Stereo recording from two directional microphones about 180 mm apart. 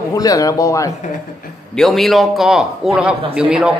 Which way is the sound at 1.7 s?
Centre (ahead or behind).